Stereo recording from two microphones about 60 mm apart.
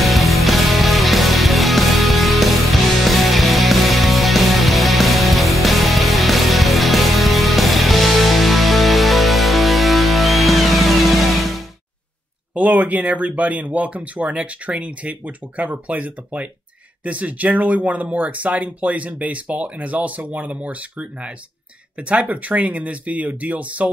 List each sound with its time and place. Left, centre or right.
0.0 s music: centre
12.5 s speech: right